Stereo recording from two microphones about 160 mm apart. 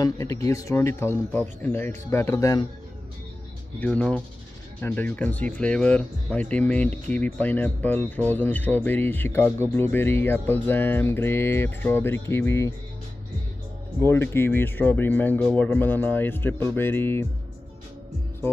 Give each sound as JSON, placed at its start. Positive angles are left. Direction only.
{"t": 0.0, "sound": "speech", "side_deg": 20}
{"t": 3.8, "sound": "speech", "side_deg": 5}
{"t": 14.0, "sound": "speech", "side_deg": 15}